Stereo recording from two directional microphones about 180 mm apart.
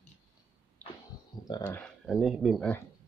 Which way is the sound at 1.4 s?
20° left (ahead or behind).